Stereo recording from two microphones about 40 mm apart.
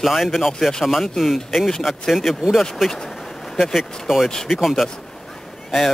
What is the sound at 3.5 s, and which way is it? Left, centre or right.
Speech, centre.